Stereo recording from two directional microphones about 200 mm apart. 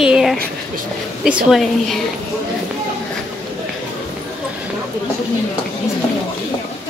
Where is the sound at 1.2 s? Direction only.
Centre (ahead or behind).